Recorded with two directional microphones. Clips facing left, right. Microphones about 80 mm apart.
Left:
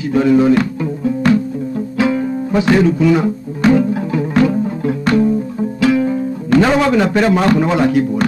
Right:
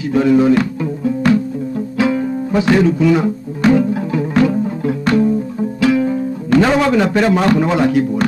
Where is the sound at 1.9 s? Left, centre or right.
Left.